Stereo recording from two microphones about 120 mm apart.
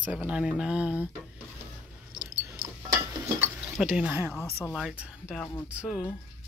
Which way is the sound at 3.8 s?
15° right (ahead or behind).